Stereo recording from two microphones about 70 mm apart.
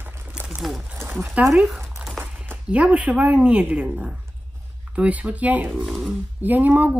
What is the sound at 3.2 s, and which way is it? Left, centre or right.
Speech, centre.